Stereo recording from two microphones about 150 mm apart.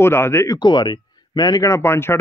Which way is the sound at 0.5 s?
30° left (ahead or behind).